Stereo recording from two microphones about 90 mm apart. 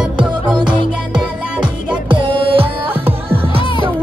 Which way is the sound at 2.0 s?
70° right (ahead or behind).